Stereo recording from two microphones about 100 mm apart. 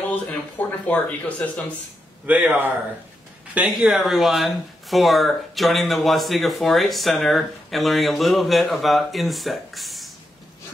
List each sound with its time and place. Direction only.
0.0 s speech: 15° left (ahead or behind)
2.2 s speech: 15° right (ahead or behind)
3.8 s speech: 5° right (ahead or behind)